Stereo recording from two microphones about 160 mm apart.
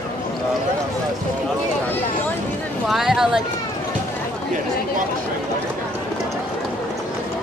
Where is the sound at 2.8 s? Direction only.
Centre (ahead or behind).